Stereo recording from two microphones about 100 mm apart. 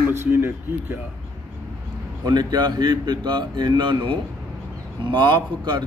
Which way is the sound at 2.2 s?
45° right (ahead or behind).